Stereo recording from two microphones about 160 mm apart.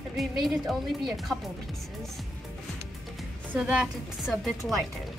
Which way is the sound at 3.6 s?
5° right (ahead or behind).